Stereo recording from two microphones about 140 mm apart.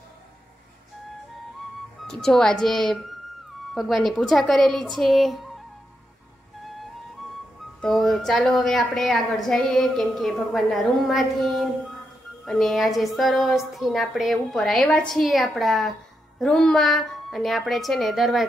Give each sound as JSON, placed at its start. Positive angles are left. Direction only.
{"t": 2.0, "sound": "a woman's voice", "side_deg": 5}
{"t": 6.6, "sound": "flute", "side_deg": 0}
{"t": 7.8, "sound": "a woman's voice", "side_deg": 0}